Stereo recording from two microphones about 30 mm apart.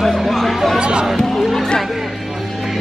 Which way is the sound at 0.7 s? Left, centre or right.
Right.